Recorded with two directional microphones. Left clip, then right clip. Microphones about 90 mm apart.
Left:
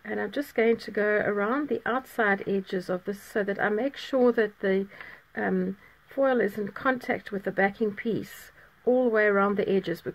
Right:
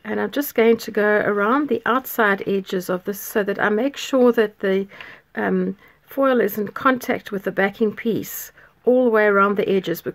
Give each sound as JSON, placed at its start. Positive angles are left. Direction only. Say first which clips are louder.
{"t": 0.0, "sound": "speech", "louder": "right 7 dB", "side_deg": -50}